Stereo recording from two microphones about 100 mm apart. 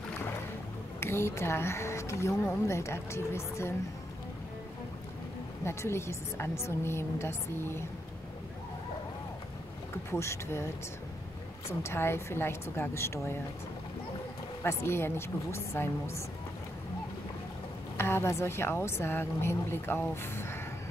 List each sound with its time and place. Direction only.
1.0 s speech: 25° left (ahead or behind)
5.6 s speech: 25° left (ahead or behind)
10.1 s speech: 30° left (ahead or behind)
11.8 s speech: 25° left (ahead or behind)
14.6 s speech: 25° left (ahead or behind)
17.9 s speech: 25° left (ahead or behind)